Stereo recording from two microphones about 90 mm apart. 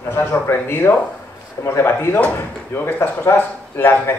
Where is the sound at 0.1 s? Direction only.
25° left (ahead or behind).